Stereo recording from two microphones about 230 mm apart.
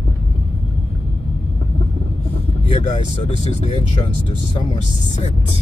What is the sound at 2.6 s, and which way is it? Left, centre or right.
Speech, left.